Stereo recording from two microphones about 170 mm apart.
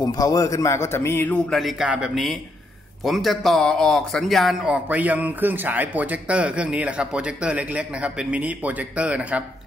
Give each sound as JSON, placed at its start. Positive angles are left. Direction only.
{"t": 0.0, "sound": "a man's voice", "side_deg": 20}
{"t": 1.6, "sound": "a man's voice", "side_deg": 0}